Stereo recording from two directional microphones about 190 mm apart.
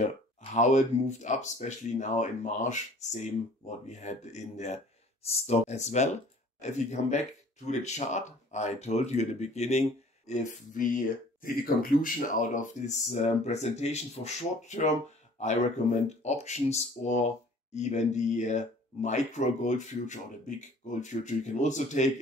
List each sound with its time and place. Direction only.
0.0 s speech: 40° left (ahead or behind)